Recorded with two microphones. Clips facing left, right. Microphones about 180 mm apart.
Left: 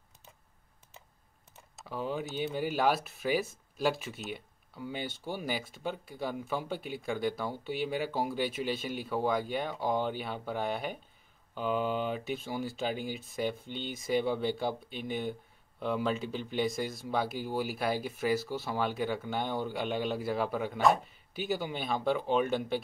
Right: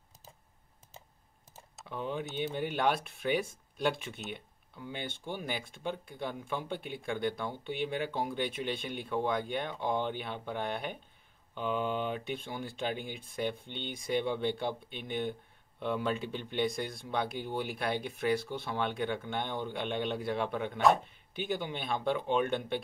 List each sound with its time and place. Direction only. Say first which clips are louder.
1.8 s speech: left 1 dB; 5° left (ahead or behind)